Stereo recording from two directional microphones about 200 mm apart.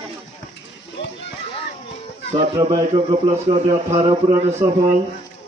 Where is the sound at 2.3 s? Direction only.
25° right (ahead or behind).